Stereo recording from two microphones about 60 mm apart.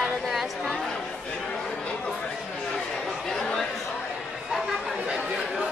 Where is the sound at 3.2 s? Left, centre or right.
Centre.